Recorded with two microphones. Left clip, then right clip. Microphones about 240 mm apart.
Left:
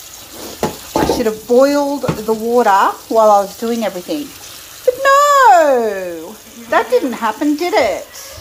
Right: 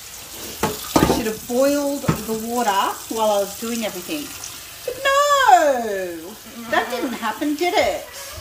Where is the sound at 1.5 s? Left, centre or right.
Centre.